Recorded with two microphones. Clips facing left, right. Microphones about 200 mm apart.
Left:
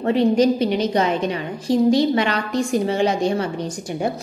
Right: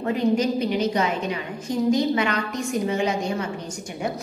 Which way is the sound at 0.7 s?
30° left (ahead or behind).